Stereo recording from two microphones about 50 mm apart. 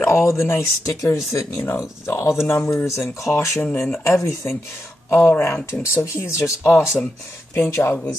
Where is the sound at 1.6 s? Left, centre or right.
Left.